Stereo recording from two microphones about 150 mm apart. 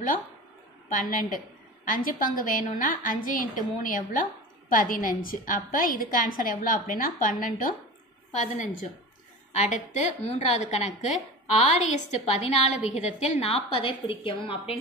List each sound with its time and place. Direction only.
0.8 s a woman's voice: 60° left (ahead or behind)
8.3 s a woman's voice: 50° left (ahead or behind); by 14.8 s 35° left (ahead or behind)